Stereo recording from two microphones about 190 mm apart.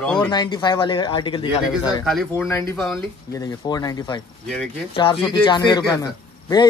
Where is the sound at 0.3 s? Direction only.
20° left (ahead or behind).